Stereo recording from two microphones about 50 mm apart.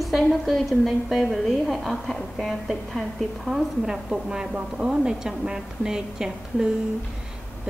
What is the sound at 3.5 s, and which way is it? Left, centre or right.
A woman's voice, centre.